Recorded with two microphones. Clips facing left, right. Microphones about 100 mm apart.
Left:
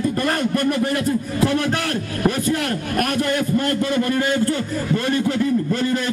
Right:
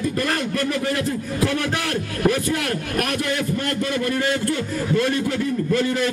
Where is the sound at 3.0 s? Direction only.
40° left (ahead or behind).